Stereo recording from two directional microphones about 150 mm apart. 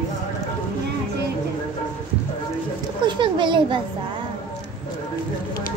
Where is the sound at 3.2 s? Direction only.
35° right (ahead or behind).